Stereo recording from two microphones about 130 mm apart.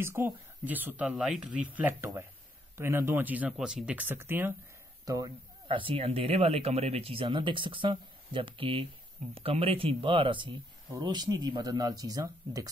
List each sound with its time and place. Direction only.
0.0 s speech: 20° right (ahead or behind)
5.7 s speech: 45° right (ahead or behind); by 12.6 s 25° right (ahead or behind)